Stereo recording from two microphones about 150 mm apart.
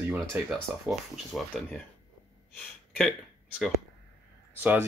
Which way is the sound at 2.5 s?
5° left (ahead or behind).